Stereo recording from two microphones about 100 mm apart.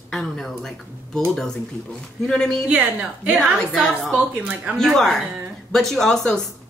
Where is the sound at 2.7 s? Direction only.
15° right (ahead or behind).